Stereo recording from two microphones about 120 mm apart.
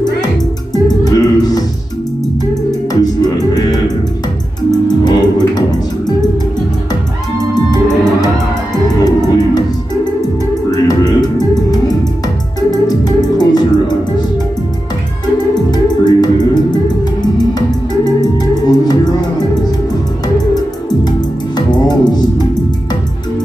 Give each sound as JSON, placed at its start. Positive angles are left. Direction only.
{"t": 0.8, "sound": "music", "side_deg": 30}
{"t": 3.5, "sound": "music", "side_deg": 35}
{"t": 7.5, "sound": "music", "side_deg": 35}
{"t": 10.7, "sound": "music", "side_deg": 35}
{"t": 12.7, "sound": "music", "side_deg": 35}
{"t": 15.7, "sound": "music", "side_deg": 35}
{"t": 21.8, "sound": "music", "side_deg": 35}